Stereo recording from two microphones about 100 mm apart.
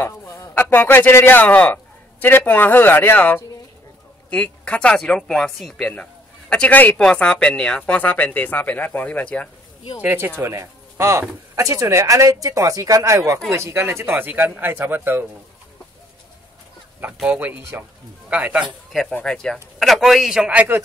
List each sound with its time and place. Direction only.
0.0 s a sound: 25° left (ahead or behind)
0.6 s speech: 20° left (ahead or behind)
6.5 s speech: 15° left (ahead or behind)
10.0 s speech: 20° right (ahead or behind)
17.3 s a man's voice: 20° right (ahead or behind)
18.6 s a man's voice: centre (ahead or behind); by 20.8 s 20° right (ahead or behind)